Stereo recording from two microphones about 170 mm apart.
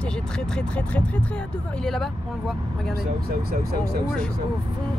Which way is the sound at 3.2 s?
65° right (ahead or behind).